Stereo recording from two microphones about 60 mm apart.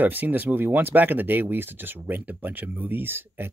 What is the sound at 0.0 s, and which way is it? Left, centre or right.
Speech, right.